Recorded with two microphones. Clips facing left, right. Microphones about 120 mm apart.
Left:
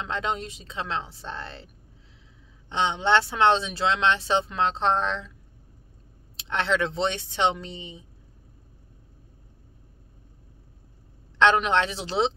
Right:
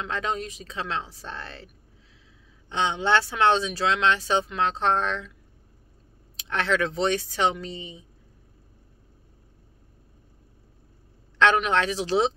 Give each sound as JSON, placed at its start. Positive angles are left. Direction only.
{"t": 0.0, "sound": "speech", "side_deg": 25}
{"t": 2.7, "sound": "speech", "side_deg": 30}
{"t": 6.3, "sound": "speech", "side_deg": 25}
{"t": 11.4, "sound": "speech", "side_deg": 25}